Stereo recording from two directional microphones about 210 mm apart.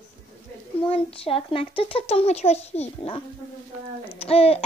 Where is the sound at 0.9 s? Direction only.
25° left (ahead or behind).